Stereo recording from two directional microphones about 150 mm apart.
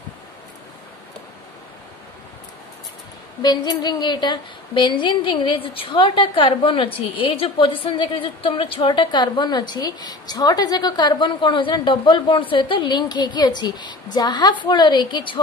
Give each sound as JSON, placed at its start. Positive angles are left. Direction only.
{"t": 3.4, "sound": "a woman's voice", "side_deg": 30}